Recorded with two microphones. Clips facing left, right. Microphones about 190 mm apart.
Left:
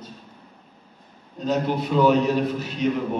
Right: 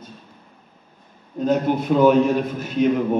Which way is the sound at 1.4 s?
50° right (ahead or behind).